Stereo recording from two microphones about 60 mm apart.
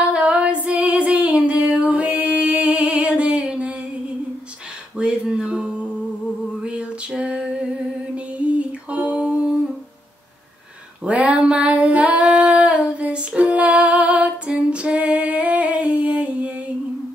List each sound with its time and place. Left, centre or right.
0.1 s female singing: centre
5.0 s a sound: centre
8.4 s humming: right
11.1 s female singing: right